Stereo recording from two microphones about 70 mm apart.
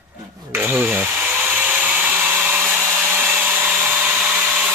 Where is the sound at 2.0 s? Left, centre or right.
Right.